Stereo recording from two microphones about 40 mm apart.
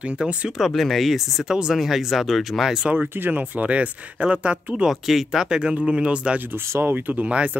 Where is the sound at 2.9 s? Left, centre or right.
Right.